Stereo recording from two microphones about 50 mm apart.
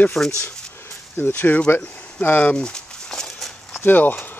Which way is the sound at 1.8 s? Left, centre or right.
Left.